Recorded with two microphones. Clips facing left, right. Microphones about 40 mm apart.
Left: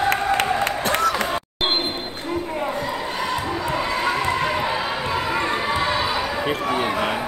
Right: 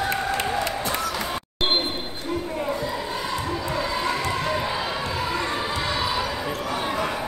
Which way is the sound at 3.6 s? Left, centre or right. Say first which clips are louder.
Left 3 dB; left.